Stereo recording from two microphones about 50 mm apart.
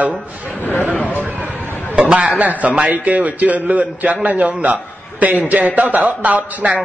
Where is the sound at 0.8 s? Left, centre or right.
Left.